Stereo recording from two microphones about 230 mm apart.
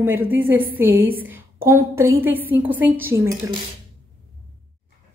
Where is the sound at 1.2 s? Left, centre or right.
Centre.